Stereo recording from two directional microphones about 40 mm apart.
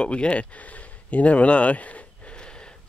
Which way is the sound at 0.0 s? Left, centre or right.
Left.